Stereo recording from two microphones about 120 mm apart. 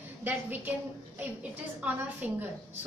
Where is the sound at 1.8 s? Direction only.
15° right (ahead or behind).